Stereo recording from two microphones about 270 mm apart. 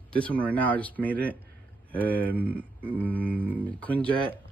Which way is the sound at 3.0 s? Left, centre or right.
Centre.